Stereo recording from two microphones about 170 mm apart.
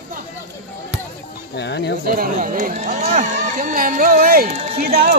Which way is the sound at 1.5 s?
85° left.